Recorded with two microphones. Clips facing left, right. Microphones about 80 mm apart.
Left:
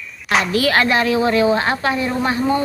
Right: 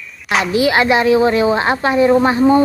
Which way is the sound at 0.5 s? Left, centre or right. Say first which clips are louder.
Right 5 dB; centre.